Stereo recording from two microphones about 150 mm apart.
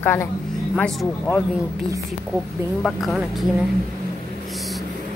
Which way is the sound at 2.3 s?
Centre (ahead or behind).